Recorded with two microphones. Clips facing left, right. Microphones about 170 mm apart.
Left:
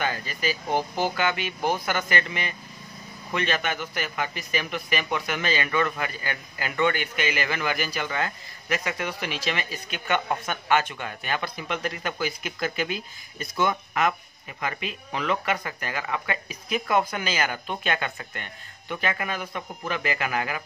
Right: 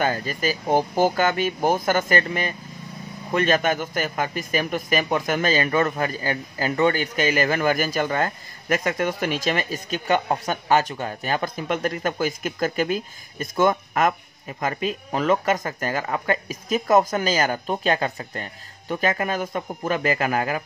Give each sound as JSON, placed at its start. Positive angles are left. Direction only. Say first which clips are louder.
{"t": 0.0, "sound": "a man's voice", "louder": "right 5 dB", "side_deg": -45}